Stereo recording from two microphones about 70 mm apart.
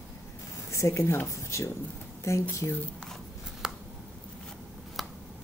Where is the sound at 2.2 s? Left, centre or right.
Left.